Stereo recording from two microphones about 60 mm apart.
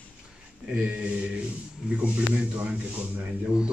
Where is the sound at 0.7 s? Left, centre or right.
Right.